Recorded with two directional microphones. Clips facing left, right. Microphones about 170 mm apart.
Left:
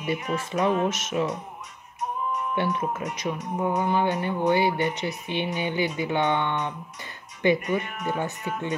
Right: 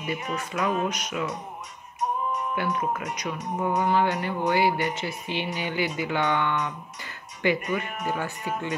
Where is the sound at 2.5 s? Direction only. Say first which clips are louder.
Left 2 dB; 25° left (ahead or behind).